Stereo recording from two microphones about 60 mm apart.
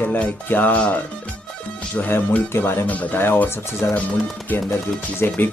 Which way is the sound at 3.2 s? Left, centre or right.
Left.